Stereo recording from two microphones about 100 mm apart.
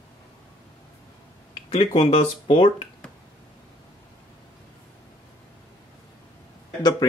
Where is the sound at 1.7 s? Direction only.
90° left.